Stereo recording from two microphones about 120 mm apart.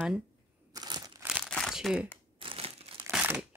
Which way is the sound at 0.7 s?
35° right (ahead or behind).